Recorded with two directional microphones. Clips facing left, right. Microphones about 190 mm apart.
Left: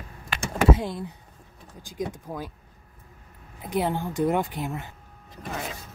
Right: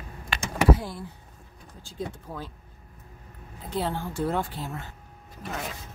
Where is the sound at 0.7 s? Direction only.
20° left (ahead or behind).